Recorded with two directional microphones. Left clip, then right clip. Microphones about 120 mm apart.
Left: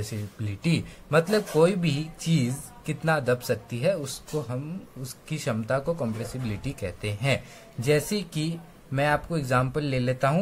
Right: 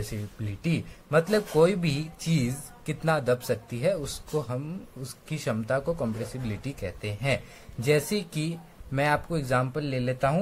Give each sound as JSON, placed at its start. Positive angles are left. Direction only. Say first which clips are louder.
{"t": 0.1, "sound": "a man's voice", "louder": "left 1 dB", "side_deg": -15}
{"t": 1.3, "sound": "speech", "louder": "right 1 dB", "side_deg": -20}
{"t": 5.0, "sound": "speech", "louder": "left 1 dB", "side_deg": -20}
{"t": 7.8, "sound": "speech", "louder": "even", "side_deg": -20}
{"t": 9.6, "sound": "a man's voice", "louder": "left 2 dB", "side_deg": 0}